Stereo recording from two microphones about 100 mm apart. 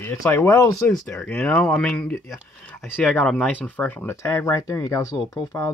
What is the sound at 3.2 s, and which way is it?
Speech, 5° left (ahead or behind).